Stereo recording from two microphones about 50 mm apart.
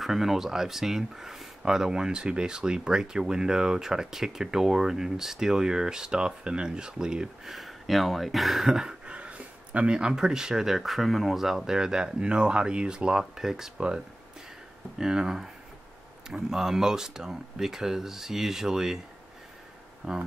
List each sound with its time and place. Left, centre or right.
0.0 s speech: centre
7.5 s speech: centre
9.0 s speech: right; by 13.7 s centre
13.7 s speech: centre
20.0 s speech: centre